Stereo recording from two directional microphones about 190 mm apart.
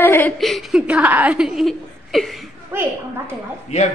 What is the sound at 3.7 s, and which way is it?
Speech, 40° left (ahead or behind).